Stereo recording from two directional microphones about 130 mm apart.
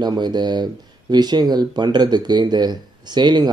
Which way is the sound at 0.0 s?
35° right (ahead or behind).